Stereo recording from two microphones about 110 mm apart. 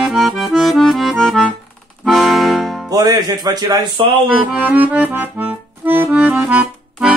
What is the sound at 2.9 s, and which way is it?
Speech, 35° right (ahead or behind).